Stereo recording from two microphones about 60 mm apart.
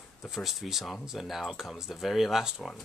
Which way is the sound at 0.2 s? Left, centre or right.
Centre.